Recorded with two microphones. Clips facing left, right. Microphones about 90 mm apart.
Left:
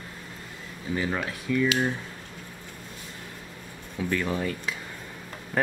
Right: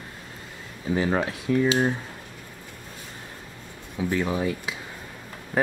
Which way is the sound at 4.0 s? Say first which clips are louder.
Right 2 dB; 15° right (ahead or behind).